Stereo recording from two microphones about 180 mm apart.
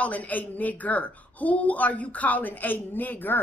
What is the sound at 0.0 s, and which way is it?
Speech, 10° left (ahead or behind).